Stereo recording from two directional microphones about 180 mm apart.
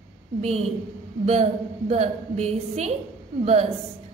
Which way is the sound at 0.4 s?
35° right (ahead or behind).